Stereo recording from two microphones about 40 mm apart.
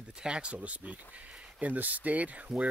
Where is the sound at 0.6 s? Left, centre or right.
Right.